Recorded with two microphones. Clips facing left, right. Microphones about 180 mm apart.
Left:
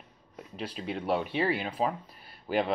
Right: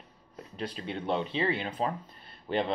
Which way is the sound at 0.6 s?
5° left (ahead or behind).